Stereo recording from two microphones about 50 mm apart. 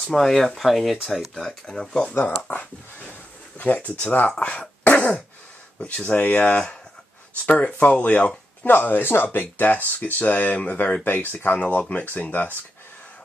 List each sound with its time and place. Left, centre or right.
0.0 s speech: centre
1.3 s speech: centre
2.1 s speech: left
4.4 s throat clearing: left
6.1 s speech: left
7.4 s speech: left
8.6 s speech: left
11.1 s speech: left